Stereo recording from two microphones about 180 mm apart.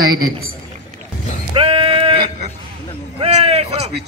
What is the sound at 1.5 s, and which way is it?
Sheep, 30° right (ahead or behind).